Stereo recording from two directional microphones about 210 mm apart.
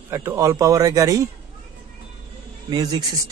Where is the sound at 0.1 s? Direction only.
15° right (ahead or behind).